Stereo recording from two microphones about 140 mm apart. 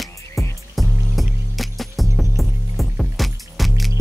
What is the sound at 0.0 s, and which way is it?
Music, centre (ahead or behind).